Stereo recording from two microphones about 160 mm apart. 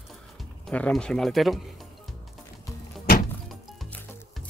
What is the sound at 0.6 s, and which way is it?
Speech, 5° left (ahead or behind).